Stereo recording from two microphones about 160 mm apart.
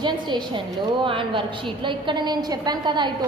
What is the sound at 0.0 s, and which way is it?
A woman's voice, 30° right (ahead or behind).